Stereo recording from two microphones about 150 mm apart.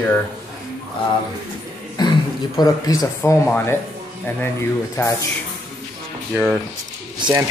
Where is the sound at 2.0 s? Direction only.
30° left (ahead or behind).